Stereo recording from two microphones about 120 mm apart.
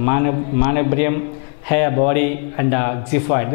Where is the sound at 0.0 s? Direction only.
10° left (ahead or behind).